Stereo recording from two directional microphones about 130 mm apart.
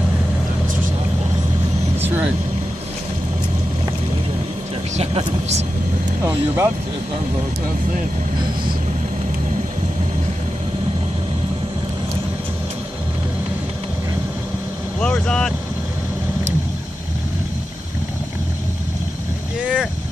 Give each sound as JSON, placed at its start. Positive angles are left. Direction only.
{"t": 2.0, "sound": "vehicle", "side_deg": -15}
{"t": 4.9, "sound": "vehicle", "side_deg": -55}
{"t": 6.2, "sound": "speech", "side_deg": -20}
{"t": 15.0, "sound": "speech", "side_deg": 5}
{"t": 19.6, "sound": "vehicle", "side_deg": -10}